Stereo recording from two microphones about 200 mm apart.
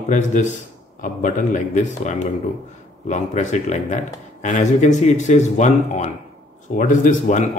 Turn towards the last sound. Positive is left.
turn(degrees=40)  # may be behind; listen again after turning